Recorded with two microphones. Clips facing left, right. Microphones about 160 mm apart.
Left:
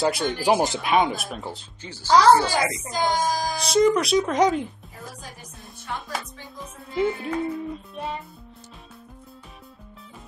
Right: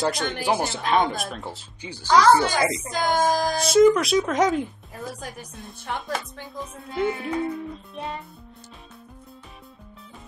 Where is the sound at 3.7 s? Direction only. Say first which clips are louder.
Right 2 dB; centre (ahead or behind).